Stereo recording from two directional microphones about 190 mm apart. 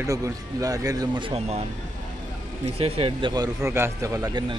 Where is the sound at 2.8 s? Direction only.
30° right (ahead or behind).